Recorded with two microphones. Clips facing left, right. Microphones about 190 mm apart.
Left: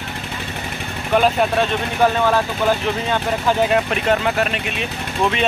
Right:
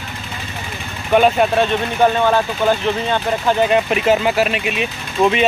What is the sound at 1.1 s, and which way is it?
Speech, 5° right (ahead or behind).